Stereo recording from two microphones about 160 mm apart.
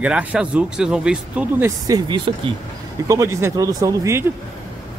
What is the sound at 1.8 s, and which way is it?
Speech, 25° right (ahead or behind).